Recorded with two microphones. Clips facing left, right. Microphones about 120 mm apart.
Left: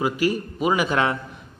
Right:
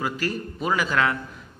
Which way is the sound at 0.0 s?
10° left (ahead or behind).